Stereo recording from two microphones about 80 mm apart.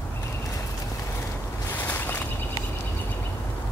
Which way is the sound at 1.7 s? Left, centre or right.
Left.